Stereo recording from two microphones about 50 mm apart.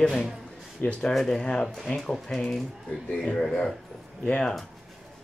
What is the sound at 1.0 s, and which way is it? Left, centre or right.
Speech, centre.